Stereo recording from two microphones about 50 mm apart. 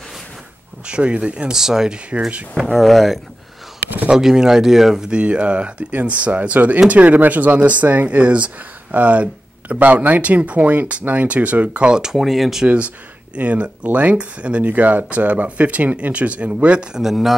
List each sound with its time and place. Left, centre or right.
0.8 s speech: right
1.5 s speech: centre
2.0 s speech: right
2.7 s speech: centre
4.1 s speech: centre
5.1 s speech: right
11.9 s speech: centre
12.2 s speech: centre
13.3 s speech: right
16.9 s speech: centre